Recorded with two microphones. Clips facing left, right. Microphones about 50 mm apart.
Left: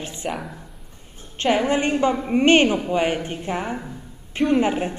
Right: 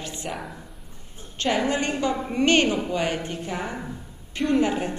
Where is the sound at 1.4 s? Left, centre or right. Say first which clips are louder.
Left 4 dB; left.